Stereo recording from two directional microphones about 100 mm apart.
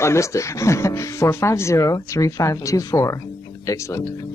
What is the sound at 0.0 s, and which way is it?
Speech, 30° left (ahead or behind).